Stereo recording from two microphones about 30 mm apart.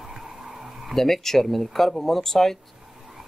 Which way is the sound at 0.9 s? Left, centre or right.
Centre.